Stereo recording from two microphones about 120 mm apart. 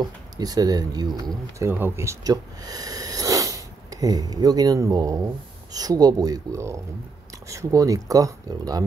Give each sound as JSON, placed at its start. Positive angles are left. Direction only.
{"t": 0.0, "sound": "speech", "side_deg": -35}
{"t": 1.7, "sound": "speech", "side_deg": -20}